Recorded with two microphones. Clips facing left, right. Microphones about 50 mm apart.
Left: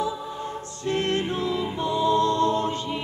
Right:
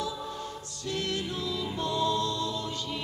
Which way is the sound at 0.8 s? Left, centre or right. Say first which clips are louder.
Left 8 dB; left.